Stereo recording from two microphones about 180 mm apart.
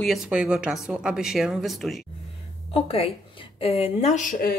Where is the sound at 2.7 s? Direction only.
30° left (ahead or behind); by 4.5 s 50° left (ahead or behind).